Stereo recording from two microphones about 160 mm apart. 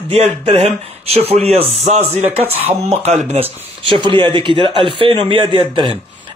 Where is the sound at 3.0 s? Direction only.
40° right (ahead or behind).